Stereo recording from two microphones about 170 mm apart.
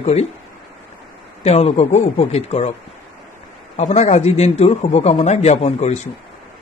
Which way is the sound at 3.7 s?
40° left (ahead or behind).